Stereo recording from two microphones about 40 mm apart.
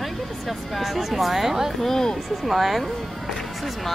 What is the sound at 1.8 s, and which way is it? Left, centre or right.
Speech, centre.